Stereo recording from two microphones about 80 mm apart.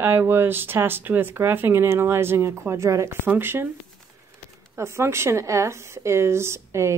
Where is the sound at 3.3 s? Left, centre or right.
Right.